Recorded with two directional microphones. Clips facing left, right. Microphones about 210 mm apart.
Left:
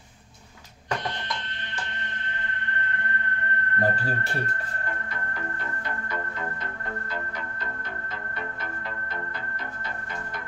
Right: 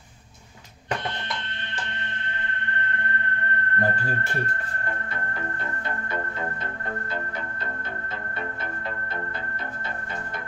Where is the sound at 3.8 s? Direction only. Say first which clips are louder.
Left 2 dB; 30° left (ahead or behind).